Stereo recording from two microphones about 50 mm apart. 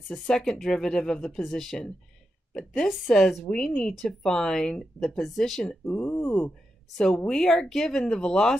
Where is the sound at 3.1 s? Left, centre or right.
Centre.